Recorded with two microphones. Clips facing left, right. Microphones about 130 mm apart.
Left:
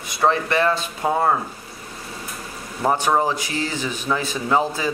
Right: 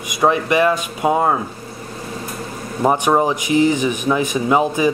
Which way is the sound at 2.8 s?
15° right (ahead or behind).